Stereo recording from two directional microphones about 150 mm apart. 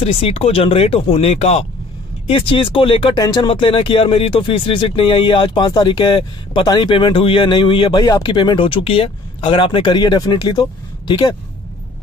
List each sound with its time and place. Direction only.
0.0 s speech: 40° left (ahead or behind)